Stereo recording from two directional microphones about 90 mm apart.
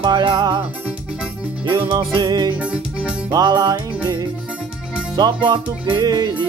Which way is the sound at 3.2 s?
50° right (ahead or behind).